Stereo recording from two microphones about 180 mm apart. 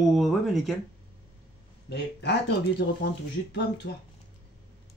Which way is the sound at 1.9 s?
65° left (ahead or behind).